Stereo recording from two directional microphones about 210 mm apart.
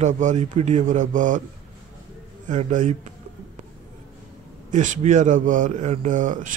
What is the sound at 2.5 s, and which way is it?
Speech, 35° right (ahead or behind).